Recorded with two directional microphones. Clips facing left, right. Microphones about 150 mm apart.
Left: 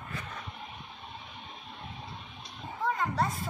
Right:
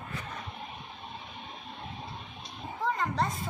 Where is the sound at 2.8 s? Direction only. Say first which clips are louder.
Even; 5° left (ahead or behind).